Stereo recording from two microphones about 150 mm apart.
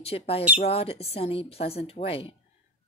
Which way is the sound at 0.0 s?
40° left (ahead or behind).